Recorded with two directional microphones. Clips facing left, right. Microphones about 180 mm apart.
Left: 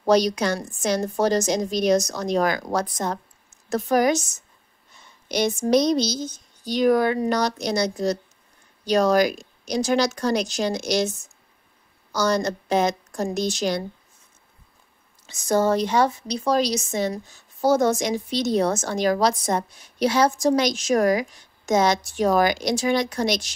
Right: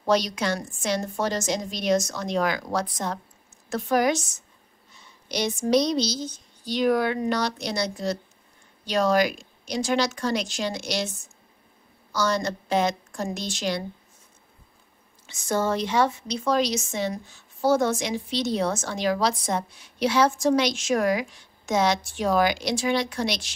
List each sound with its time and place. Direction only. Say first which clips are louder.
0.0 s a woman's voice: left 4 dB; 40° left (ahead or behind)
15.2 s speech: left 5 dB; 40° left (ahead or behind)